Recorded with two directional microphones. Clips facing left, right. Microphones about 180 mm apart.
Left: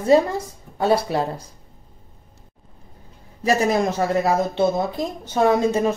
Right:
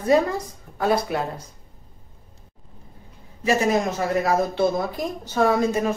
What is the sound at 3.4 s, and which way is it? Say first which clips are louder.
Speech: left 1 dB; 30° left (ahead or behind).